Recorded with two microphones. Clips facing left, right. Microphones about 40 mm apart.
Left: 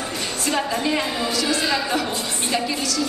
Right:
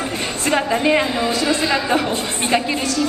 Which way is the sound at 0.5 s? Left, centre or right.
Right.